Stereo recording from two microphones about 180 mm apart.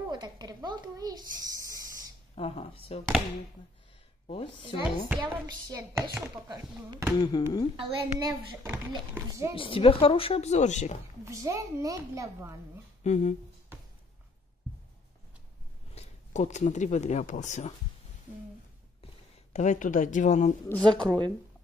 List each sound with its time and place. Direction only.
0.1 s a child's voice: 25° right (ahead or behind)
2.3 s speech: 35° left (ahead or behind)
4.3 s speech: 30° left (ahead or behind)
4.8 s a woman's voice: 5° right (ahead or behind)
5.7 s a child's voice: 20° right (ahead or behind)
7.2 s speech: 25° left (ahead or behind)
7.7 s a child's voice: 25° right (ahead or behind)
8.6 s a child's voice: 10° right (ahead or behind)
9.6 s speech: 30° left (ahead or behind)
11.2 s a child's voice: 15° right (ahead or behind)
13.0 s speech: 40° left (ahead or behind)
15.9 s speech: 40° left (ahead or behind)
19.5 s speech: 45° left (ahead or behind)
20.6 s a woman's voice: 5° left (ahead or behind)